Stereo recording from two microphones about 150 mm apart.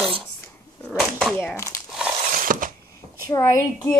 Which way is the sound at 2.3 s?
65° right (ahead or behind).